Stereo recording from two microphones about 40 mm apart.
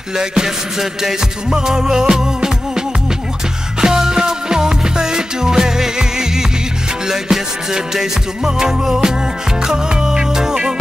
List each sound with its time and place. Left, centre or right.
0.2 s music: centre
3.8 s music: centre